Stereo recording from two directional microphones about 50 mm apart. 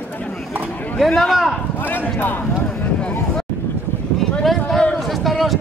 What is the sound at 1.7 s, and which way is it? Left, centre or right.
Speech, left.